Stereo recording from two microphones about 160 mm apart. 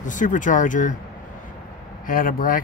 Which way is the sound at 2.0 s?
60° left (ahead or behind).